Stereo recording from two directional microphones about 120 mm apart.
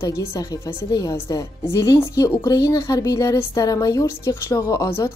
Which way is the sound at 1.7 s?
25° left (ahead or behind).